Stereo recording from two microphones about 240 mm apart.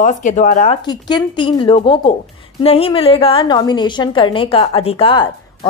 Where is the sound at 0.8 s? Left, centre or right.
Centre.